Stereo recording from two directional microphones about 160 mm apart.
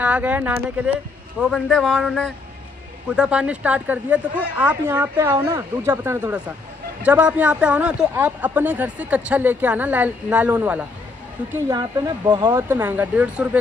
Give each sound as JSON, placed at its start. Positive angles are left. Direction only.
{"t": 0.0, "sound": "a man's voice", "side_deg": -10}
{"t": 5.0, "sound": "speech", "side_deg": -20}
{"t": 11.7, "sound": "speech", "side_deg": -25}
{"t": 12.6, "sound": "speech", "side_deg": -10}